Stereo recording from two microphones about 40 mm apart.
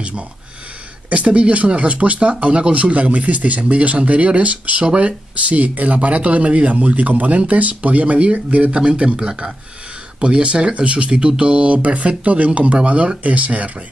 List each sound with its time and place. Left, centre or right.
1.1 s speech: right